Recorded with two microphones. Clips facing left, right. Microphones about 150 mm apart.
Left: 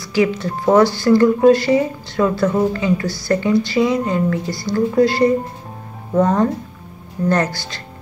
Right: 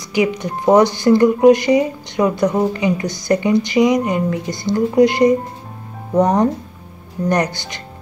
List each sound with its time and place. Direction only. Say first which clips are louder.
0.0 s speech: left 1 dB; 20° right (ahead or behind)